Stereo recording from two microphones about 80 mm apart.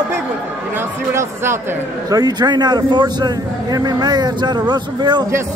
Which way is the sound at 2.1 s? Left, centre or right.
Right.